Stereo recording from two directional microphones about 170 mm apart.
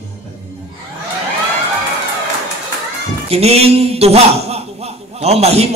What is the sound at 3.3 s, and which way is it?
Speech, 35° right (ahead or behind).